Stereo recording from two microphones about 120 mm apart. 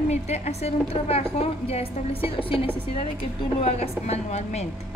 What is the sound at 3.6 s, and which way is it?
A woman's voice, 60° left (ahead or behind).